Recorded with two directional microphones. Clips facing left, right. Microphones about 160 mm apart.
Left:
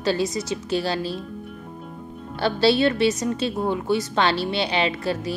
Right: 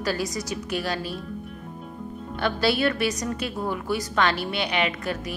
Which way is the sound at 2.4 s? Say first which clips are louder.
Left 4 dB; 30° left (ahead or behind).